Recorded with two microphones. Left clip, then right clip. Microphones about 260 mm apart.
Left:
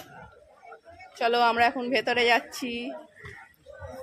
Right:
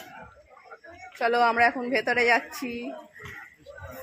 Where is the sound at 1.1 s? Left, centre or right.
Centre.